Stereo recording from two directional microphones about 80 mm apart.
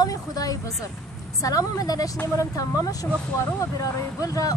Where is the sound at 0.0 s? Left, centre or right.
Left.